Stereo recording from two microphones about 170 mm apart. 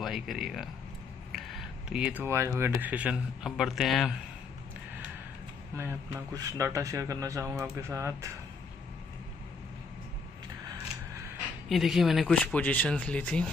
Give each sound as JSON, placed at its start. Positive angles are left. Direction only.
{"t": 0.0, "sound": "speech", "side_deg": 0}
{"t": 1.3, "sound": "a sound", "side_deg": 0}
{"t": 2.6, "sound": "speech", "side_deg": -10}
{"t": 5.8, "sound": "speech", "side_deg": -20}
{"t": 11.7, "sound": "speech", "side_deg": 0}